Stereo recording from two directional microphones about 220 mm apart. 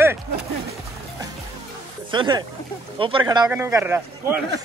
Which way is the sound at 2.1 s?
20° right (ahead or behind).